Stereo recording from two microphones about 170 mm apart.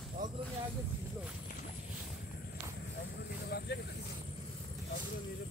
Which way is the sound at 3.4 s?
70° left (ahead or behind).